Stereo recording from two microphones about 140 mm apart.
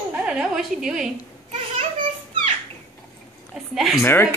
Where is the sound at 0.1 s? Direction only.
5° right (ahead or behind).